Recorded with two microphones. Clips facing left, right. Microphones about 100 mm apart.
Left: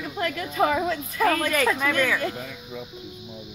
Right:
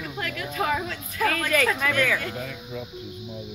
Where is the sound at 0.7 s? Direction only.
25° left (ahead or behind).